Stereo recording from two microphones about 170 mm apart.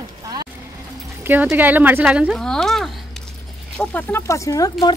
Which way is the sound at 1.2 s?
10° right (ahead or behind).